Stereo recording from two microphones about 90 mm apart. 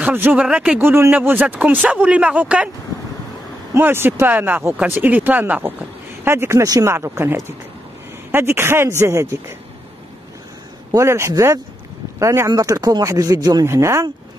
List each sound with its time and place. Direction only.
0.1 s speech: 20° right (ahead or behind)
0.5 s a man's voice: 10° right (ahead or behind)
0.7 s a man's voice: 25° right (ahead or behind)
3.7 s speech: 25° right (ahead or behind)
6.6 s speech: 35° right (ahead or behind)
10.9 s a man's voice: 30° right (ahead or behind)
12.4 s speech: 40° right (ahead or behind)
13.7 s a man's voice: 35° right (ahead or behind)